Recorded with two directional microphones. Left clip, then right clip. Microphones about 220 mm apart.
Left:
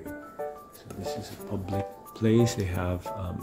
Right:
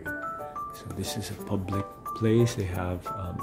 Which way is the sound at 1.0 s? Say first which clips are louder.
Left 2 dB; 45° right (ahead or behind).